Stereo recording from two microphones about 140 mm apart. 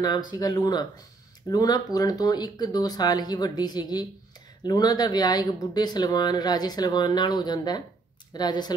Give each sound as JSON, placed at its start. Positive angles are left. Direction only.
{"t": 0.3, "sound": "speech", "side_deg": 25}